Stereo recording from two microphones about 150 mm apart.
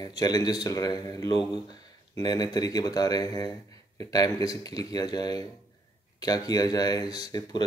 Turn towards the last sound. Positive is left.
turn(degrees=25)  # may be behind; listen again after turning